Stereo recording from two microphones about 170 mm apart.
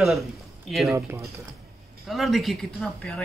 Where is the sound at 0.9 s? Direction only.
20° right (ahead or behind).